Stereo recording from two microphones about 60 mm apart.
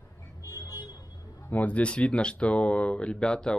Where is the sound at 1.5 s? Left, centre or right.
Left.